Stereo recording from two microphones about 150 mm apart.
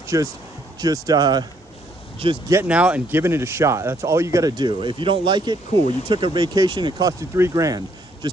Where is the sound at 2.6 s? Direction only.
10° right (ahead or behind).